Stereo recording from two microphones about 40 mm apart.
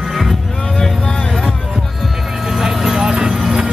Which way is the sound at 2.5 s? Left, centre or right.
Centre.